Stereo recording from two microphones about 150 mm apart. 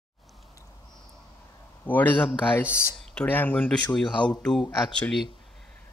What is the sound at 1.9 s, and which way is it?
Speech, 10° left (ahead or behind).